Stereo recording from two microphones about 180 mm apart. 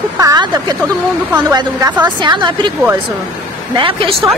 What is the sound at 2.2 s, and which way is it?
Speech, 25° right (ahead or behind).